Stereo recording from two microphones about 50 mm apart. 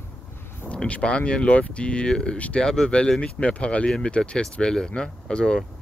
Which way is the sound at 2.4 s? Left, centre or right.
Left.